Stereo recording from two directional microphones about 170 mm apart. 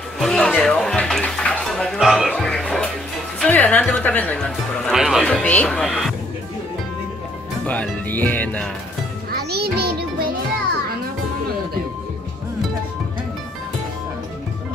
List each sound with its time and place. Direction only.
0.2 s a sound: 5° left (ahead or behind)
3.3 s speech: 10° left (ahead or behind)
7.6 s speech: 10° left (ahead or behind)
9.3 s music: 65° right (ahead or behind)